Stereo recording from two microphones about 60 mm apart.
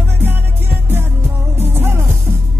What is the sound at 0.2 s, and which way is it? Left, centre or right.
Music, right.